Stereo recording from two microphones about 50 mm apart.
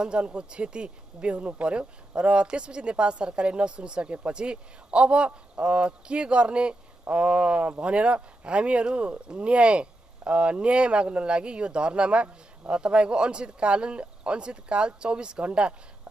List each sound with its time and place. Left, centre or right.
0.0 s speech: right